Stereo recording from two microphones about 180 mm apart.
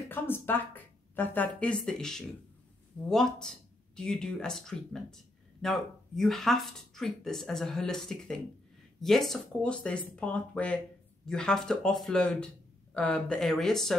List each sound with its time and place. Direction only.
0.1 s speech: 10° left (ahead or behind)